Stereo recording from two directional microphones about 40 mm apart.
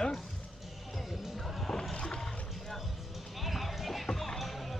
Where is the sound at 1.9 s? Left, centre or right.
Left.